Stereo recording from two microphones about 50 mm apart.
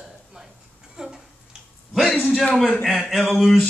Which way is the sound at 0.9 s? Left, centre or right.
Centre.